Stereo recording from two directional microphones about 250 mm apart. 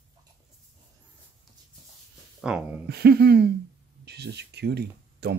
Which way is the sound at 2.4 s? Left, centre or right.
Centre.